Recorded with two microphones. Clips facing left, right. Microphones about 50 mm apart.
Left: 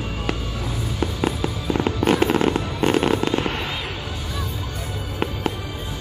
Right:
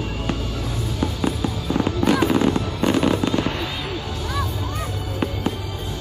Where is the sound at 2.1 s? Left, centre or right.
Left.